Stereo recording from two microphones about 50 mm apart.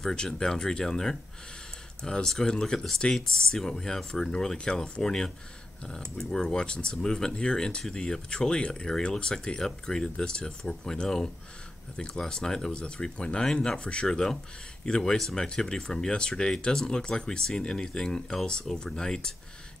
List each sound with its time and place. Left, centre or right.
0.0 s speech: centre